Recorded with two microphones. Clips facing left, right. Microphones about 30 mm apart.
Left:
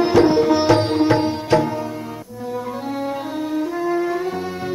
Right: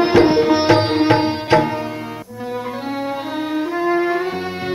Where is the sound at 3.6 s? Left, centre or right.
Right.